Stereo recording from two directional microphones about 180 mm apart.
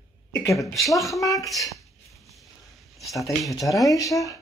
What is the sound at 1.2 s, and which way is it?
Speech, 20° left (ahead or behind).